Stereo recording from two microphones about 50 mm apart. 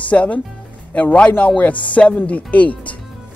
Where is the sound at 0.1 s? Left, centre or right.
Left.